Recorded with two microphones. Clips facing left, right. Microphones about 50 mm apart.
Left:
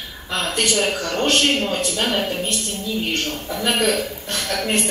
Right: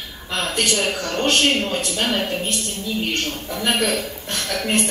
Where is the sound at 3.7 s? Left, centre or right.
Left.